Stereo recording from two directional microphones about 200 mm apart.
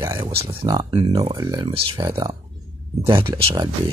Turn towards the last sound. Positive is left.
turn(degrees=-25)  # may be behind; listen again after turning